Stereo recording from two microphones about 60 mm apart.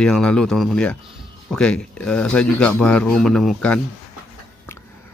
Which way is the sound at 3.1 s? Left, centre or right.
Centre.